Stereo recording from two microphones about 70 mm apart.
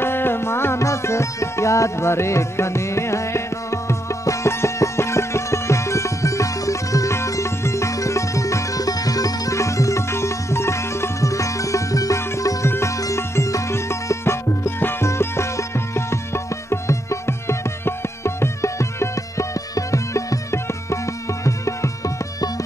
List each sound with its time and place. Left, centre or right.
0.0 s music: left
12.6 s sitar: left
13.0 s music: left
14.8 s music: left
15.0 s music: left